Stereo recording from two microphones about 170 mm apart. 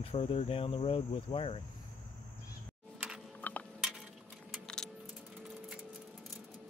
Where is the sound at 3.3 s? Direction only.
10° left (ahead or behind).